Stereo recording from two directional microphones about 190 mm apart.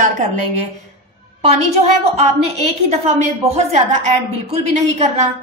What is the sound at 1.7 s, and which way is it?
A woman's voice, 35° right (ahead or behind).